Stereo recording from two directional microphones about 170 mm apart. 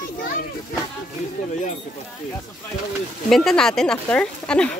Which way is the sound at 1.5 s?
45° left (ahead or behind).